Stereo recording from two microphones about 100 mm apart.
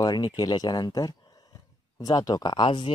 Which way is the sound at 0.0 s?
45° left (ahead or behind).